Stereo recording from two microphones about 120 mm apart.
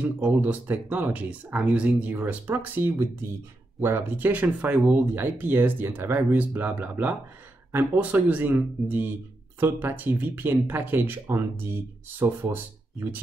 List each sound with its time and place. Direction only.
0.0 s speech: 15° right (ahead or behind)